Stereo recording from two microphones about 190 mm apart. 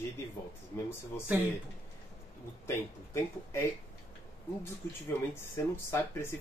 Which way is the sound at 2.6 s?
15° left (ahead or behind).